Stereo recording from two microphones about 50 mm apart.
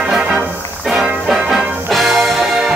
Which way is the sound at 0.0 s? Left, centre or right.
Centre.